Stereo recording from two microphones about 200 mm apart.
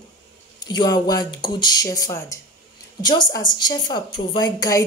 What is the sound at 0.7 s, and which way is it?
A woman's voice, 20° left (ahead or behind).